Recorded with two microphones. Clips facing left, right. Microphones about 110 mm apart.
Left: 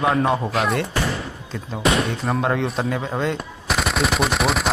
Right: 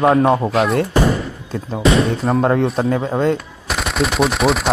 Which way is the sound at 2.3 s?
40° right (ahead or behind).